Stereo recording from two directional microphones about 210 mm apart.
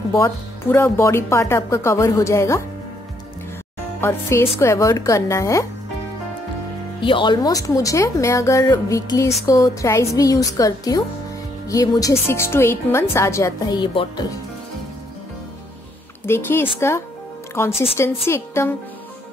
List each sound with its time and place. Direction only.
0.2 s a woman's voice: 10° left (ahead or behind)
4.0 s a woman's voice: 10° left (ahead or behind)
7.0 s a woman's voice: 25° left (ahead or behind)
16.3 s a woman's voice: 10° left (ahead or behind)